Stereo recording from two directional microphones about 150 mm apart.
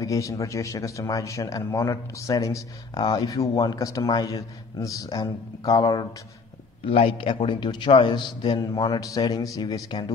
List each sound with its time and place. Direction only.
0.0 s a man's voice: 20° left (ahead or behind)
6.9 s a man's voice: 40° left (ahead or behind)